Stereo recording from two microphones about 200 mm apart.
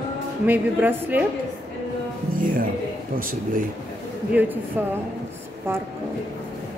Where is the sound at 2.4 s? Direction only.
45° right (ahead or behind).